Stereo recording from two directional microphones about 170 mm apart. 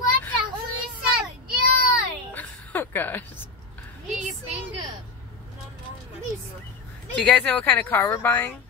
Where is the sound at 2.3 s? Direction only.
10° left (ahead or behind).